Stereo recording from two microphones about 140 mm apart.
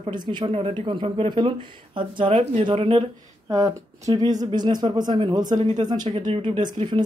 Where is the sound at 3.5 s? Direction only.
25° right (ahead or behind).